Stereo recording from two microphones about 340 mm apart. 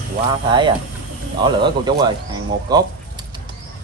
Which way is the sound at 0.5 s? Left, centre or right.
Centre.